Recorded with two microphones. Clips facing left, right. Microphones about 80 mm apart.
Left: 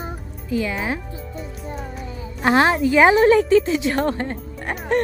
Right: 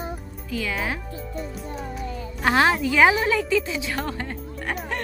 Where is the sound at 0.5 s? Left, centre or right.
Left.